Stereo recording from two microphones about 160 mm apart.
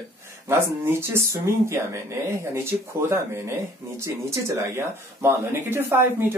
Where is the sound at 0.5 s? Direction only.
15° right (ahead or behind).